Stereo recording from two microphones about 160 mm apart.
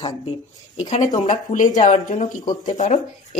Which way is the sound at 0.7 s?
45° left (ahead or behind).